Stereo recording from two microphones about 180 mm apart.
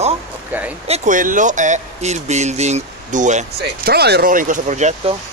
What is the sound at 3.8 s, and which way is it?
Speech, 65° right (ahead or behind).